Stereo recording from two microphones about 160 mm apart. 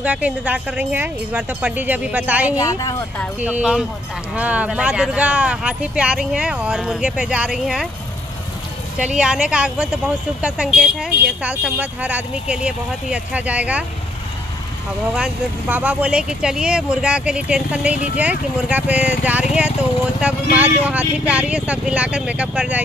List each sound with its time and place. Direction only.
0.0 s speech: 10° right (ahead or behind)
2.5 s speech: 20° left (ahead or behind)
3.4 s speech: 5° right (ahead or behind)
9.0 s speech: 5° right (ahead or behind)
15.1 s speech: 5° right (ahead or behind)